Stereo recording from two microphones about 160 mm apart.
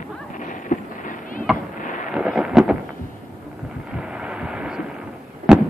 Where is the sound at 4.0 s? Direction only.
5° right (ahead or behind).